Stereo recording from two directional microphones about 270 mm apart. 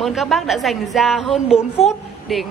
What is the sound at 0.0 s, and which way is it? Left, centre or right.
Speech, centre.